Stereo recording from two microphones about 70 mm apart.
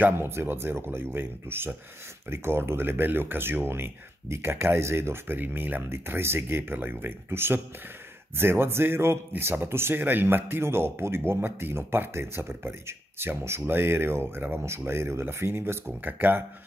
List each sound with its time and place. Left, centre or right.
0.0 s a man's voice: right